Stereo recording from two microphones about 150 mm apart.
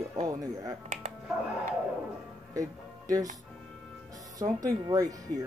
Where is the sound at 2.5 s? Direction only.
25° right (ahead or behind).